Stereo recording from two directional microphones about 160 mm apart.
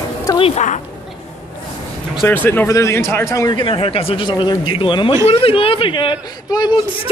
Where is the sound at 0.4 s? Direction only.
45° left (ahead or behind).